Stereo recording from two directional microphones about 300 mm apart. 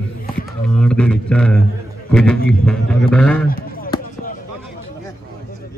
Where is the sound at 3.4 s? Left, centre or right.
Left.